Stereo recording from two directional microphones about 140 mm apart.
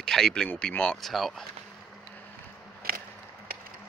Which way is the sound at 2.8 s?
90° right.